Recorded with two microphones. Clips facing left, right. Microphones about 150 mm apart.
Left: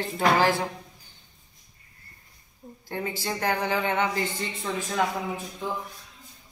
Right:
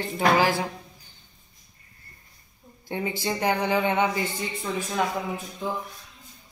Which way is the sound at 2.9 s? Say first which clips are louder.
Right 3 dB; 15° right (ahead or behind).